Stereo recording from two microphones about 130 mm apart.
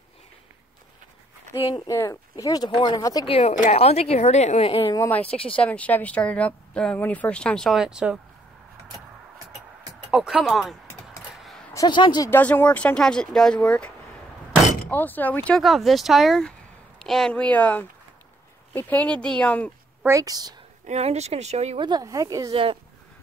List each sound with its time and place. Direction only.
2.0 s speech: 25° left (ahead or behind)
3.3 s a woman's voice: 50° left (ahead or behind)
5.0 s speech: 10° left (ahead or behind)
5.3 s a woman's voice: 45° left (ahead or behind)
5.6 s speech: 10° left (ahead or behind); by 8.2 s 5° right (ahead or behind)
10.1 s speech: 5° right (ahead or behind)
11.7 s speech: 30° left (ahead or behind)
12.3 s speech: 15° left (ahead or behind)
15.5 s speech: centre (ahead or behind)
20.1 s speech: 25° right (ahead or behind)
20.8 s speech: 55° right (ahead or behind)
21.7 s speech: 35° right (ahead or behind)
22.5 s speech: 45° right (ahead or behind)